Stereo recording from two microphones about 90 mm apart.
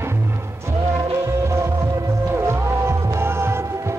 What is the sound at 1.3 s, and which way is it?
Music, 30° right (ahead or behind).